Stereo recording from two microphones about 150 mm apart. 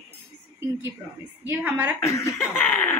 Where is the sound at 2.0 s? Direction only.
20° left (ahead or behind).